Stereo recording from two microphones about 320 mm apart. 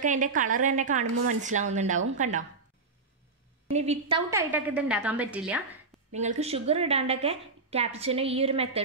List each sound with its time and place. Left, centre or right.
0.0 s a woman's voice: right
3.7 s a woman's voice: centre
4.3 s a woman's voice: centre
6.1 s a woman's voice: right